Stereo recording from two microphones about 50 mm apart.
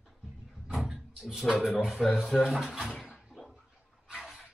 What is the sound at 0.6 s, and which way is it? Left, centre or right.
Door, centre.